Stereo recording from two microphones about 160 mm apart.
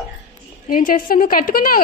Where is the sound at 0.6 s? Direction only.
60° left (ahead or behind).